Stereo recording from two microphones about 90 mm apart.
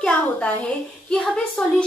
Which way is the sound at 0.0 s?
15° left (ahead or behind).